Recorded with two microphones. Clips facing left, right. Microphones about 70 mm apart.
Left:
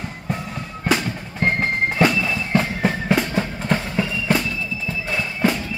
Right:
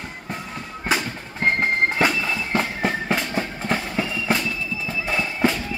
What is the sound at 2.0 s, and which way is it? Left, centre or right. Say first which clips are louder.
Bagpipes: left 3 dB; centre.